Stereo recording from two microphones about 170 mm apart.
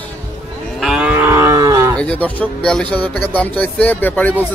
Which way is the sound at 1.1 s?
15° right (ahead or behind).